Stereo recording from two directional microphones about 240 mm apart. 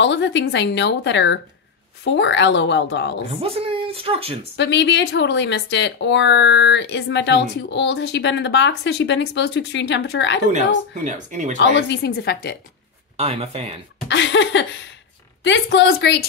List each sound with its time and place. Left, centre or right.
0.0 s a woman's voice: left
3.4 s speech: right
4.6 s a woman's voice: left
11.1 s speech: right
11.5 s a woman's voice: left
13.2 s speech: right
14.0 s a woman's voice: left